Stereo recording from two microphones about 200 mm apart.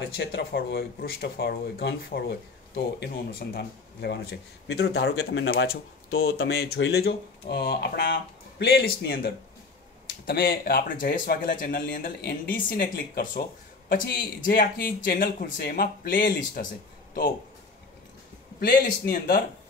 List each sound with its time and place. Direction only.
0.1 s speech: 55° left (ahead or behind)
6.0 s speech: 90° left
6.3 s speech: 55° left (ahead or behind)
18.6 s speech: 45° left (ahead or behind)